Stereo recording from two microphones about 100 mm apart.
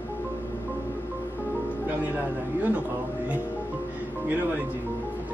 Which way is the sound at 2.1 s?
15° right (ahead or behind).